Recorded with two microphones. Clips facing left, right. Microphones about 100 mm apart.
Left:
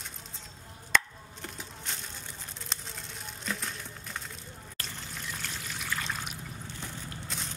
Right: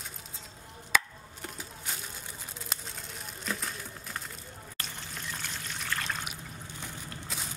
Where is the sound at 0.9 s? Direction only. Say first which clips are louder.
Left 1 dB; 5° right (ahead or behind).